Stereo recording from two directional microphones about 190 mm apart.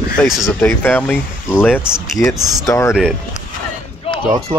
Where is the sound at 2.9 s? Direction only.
Centre (ahead or behind).